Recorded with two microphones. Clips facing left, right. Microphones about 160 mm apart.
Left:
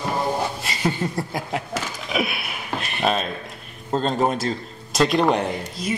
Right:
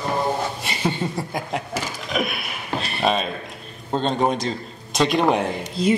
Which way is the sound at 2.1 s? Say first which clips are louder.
Left 1 dB; 5° left (ahead or behind).